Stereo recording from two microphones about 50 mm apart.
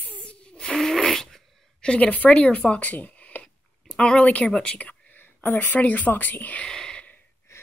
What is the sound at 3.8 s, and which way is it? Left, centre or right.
Speech, centre.